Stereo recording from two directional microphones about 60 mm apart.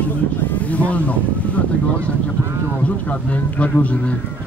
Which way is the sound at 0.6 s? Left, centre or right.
Left.